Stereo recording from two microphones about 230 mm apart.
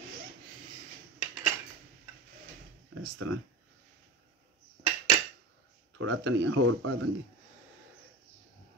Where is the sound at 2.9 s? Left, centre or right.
Right.